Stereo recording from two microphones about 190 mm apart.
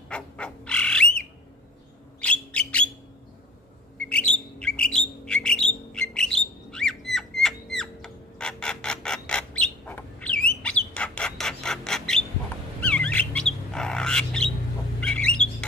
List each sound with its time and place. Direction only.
0.1 s bird: 5° left (ahead or behind)
4.1 s bird: 5° left (ahead or behind)